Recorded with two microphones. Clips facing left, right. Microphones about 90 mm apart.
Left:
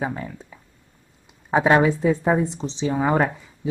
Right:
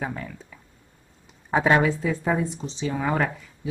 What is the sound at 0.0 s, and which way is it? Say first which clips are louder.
A woman's voice: left 4 dB; 15° left (ahead or behind).